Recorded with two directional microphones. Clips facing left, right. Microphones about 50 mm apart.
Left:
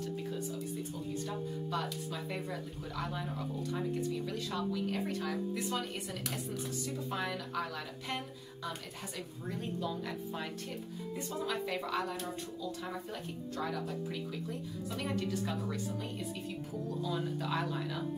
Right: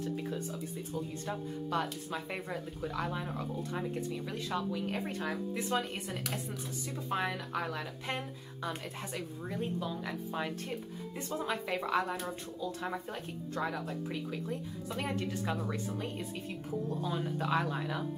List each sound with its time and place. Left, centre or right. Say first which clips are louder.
1.2 s speech: right 1 dB; right
4.9 s speech: even; right
7.1 s speech: right 6 dB; right
9.8 s speech: even; centre
11.2 s speech: right 2 dB; right
14.9 s speech: even; right
17.1 s speech: right 4 dB; right